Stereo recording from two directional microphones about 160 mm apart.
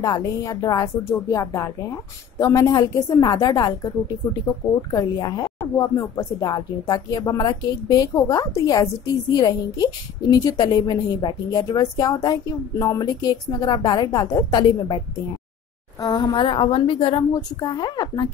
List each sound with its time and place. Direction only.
0.0 s a woman's voice: 25° left (ahead or behind)
4.9 s a woman's voice: 25° left (ahead or behind)
16.0 s a woman's voice: 20° left (ahead or behind)